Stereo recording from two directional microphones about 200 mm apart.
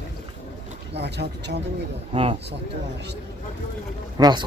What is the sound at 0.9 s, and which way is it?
Speech, 60° right (ahead or behind).